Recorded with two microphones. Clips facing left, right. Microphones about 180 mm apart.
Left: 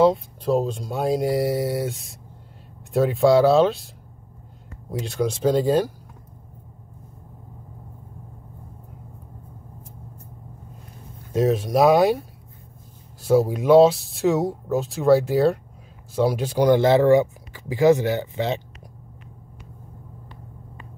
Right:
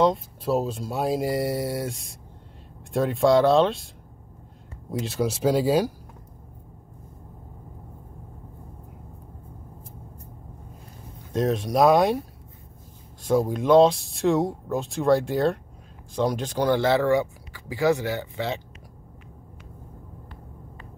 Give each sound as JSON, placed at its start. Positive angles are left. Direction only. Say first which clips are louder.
{"t": 0.0, "sound": "speech", "louder": "left 4 dB", "side_deg": 0}
{"t": 5.0, "sound": "speech", "louder": "left 2 dB", "side_deg": -5}
{"t": 11.3, "sound": "speech", "louder": "left 3 dB", "side_deg": 5}